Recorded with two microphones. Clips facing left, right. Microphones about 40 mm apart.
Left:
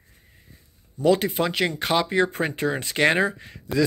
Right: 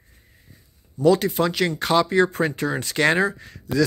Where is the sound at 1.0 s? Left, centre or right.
Centre.